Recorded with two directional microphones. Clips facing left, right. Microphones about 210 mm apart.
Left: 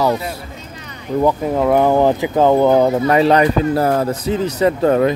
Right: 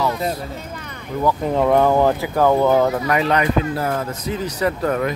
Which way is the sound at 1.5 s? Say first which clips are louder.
Even; 10° left (ahead or behind).